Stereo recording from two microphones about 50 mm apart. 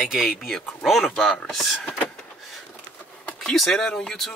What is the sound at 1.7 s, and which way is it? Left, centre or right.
Vehicle, left.